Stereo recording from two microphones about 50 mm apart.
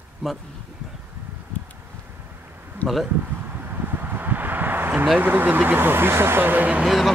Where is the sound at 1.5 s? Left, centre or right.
Left.